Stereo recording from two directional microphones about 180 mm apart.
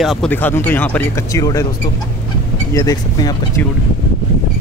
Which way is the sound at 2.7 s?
20° left (ahead or behind).